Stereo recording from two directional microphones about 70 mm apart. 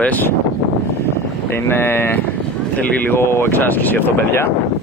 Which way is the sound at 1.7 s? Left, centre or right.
Left.